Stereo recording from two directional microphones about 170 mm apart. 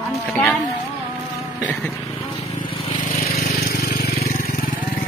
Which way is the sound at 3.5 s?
65° left (ahead or behind).